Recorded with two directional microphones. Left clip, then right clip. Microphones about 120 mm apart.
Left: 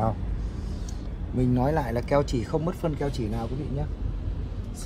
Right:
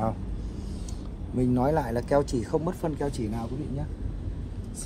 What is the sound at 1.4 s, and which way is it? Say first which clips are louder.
Speech: even; 85° right.